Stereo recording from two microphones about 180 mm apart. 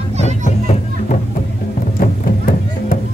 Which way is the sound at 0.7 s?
40° left (ahead or behind).